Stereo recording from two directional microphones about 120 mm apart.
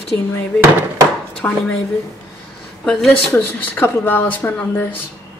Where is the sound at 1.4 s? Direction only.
10° left (ahead or behind).